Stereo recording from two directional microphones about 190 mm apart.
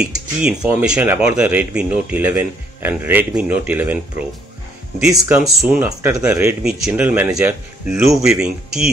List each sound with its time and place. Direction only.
0.0 s speech: 5° right (ahead or behind)
5.1 s speech: 20° right (ahead or behind)
5.6 s speech: 5° right (ahead or behind)
5.9 s speech: 15° right (ahead or behind)